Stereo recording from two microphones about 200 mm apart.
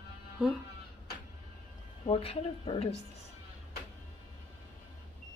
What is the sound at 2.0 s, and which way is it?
Speech, 30° left (ahead or behind).